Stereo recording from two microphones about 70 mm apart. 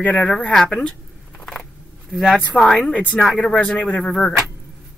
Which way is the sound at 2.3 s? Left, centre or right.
Centre.